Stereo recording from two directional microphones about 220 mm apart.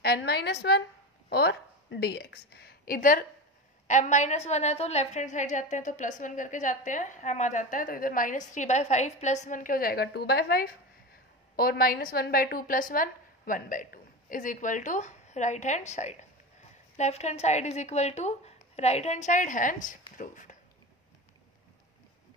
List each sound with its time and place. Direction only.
0.0 s a woman's voice: 45° left (ahead or behind)